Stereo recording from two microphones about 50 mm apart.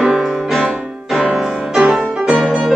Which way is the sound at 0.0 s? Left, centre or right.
Centre.